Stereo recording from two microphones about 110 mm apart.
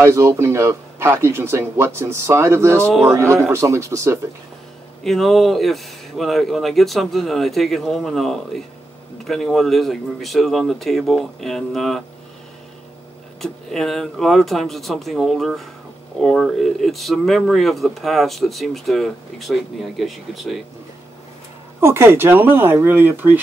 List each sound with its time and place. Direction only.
0.0 s speech: 25° right (ahead or behind)
5.0 s speech: centre (ahead or behind)
13.4 s speech: centre (ahead or behind)
21.7 s speech: 20° right (ahead or behind)